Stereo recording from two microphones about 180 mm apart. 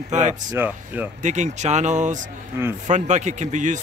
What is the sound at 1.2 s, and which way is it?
Speech, 40° right (ahead or behind).